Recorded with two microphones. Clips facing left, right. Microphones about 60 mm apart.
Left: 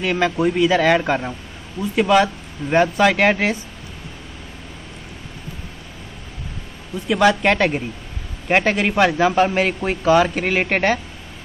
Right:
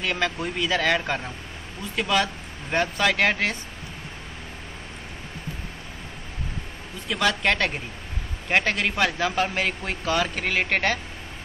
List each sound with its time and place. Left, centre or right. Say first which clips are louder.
0.0 s speech: left 8 dB; centre
7.1 s speech: left 7 dB; centre